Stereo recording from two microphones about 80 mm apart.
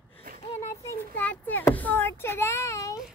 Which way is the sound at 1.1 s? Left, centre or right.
Left.